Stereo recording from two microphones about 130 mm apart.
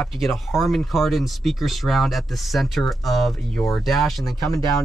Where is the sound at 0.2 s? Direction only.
Centre (ahead or behind).